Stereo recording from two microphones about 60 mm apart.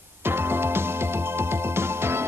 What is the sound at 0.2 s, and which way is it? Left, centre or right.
Music, right.